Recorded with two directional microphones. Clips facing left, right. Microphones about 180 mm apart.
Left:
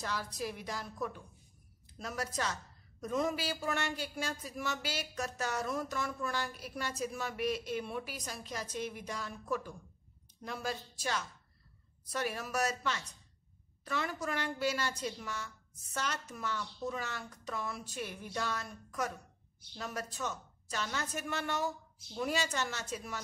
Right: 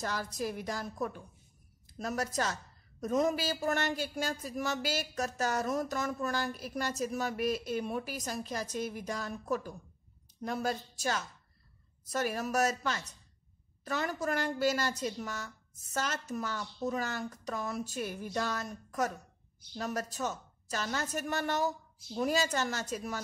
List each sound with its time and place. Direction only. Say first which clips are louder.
0.0 s a woman's voice: right 3 dB; 45° right (ahead or behind)